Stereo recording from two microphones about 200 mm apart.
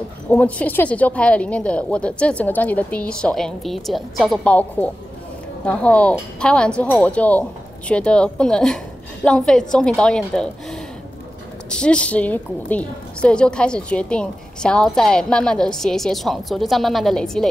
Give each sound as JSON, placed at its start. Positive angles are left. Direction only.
{"t": 0.3, "sound": "a woman's voice", "side_deg": 5}